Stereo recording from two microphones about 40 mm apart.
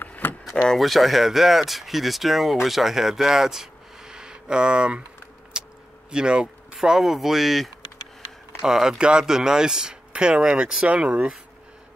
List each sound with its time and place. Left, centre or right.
0.2 s vehicle: left
0.7 s speech: centre; by 5.0 s right
5.5 s a sound: right
6.1 s speech: right
6.8 s speech: centre
8.6 s speech: centre
10.9 s speech: right